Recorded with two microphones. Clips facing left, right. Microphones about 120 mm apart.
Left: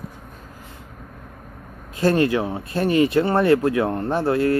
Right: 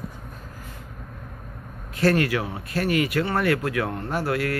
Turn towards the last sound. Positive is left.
turn(degrees=25)  # may be behind; listen again after turning